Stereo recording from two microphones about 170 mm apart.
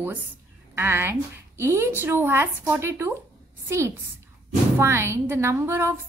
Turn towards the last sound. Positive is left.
turn(degrees=-15)  # may be behind; listen again after turning